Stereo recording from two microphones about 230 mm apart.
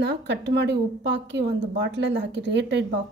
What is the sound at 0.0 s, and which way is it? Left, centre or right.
A woman's voice, right.